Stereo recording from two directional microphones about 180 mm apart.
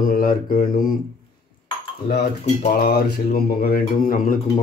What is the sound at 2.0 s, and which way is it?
Speech, 65° left (ahead or behind).